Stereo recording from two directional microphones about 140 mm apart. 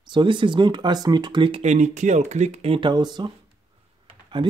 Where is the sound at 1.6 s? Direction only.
55° right (ahead or behind).